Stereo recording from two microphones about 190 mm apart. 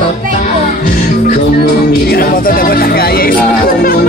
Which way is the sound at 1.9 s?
50° left (ahead or behind).